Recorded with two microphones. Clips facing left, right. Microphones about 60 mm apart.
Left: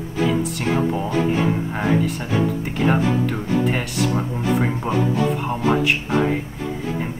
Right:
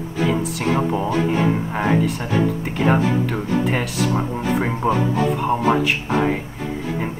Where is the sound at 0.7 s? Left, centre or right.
Centre.